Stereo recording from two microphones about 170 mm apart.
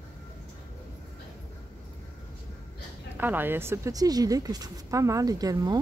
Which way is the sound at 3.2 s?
10° right (ahead or behind).